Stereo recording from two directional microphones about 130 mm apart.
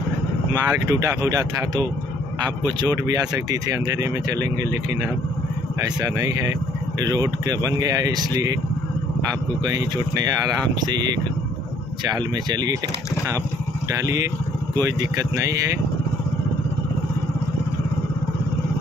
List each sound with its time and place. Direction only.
0.5 s speech: 25° right (ahead or behind)
5.8 s speech: 25° right (ahead or behind)
10.8 s speech: 30° right (ahead or behind)
13.9 s speech: 25° right (ahead or behind)